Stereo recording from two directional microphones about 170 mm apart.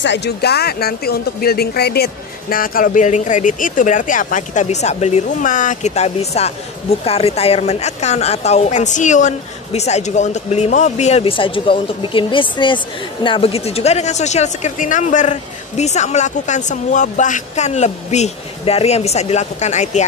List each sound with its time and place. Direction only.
0.0 s speech: 85° left; by 2.0 s 70° left (ahead or behind)
2.5 s a woman's voice: 55° left (ahead or behind)